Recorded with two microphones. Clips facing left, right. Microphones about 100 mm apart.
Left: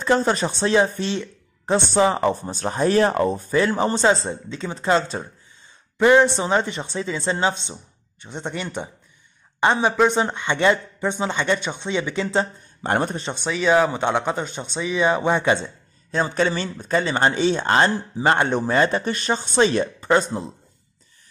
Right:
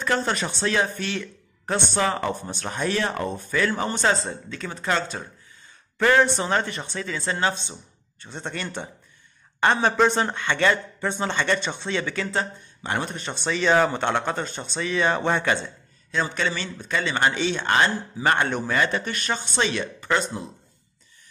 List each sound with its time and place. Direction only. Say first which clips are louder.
0.0 s speech: left 5 dB; 25° left (ahead or behind); by 10.2 s 10° left (ahead or behind)
10.2 s speech: left 3 dB; 20° left (ahead or behind)
12.8 s speech: left 6 dB; 45° left (ahead or behind)
13.4 s speech: left 2 dB; 5° left (ahead or behind)
16.1 s speech: left 5 dB; 35° left (ahead or behind)